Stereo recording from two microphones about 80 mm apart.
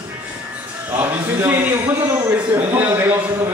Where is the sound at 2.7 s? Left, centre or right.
Right.